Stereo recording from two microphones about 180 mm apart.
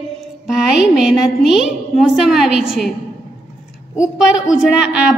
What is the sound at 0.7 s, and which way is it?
A woman's voice, centre (ahead or behind).